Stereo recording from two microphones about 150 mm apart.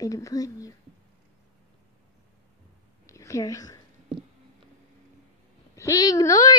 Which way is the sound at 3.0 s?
20° left (ahead or behind).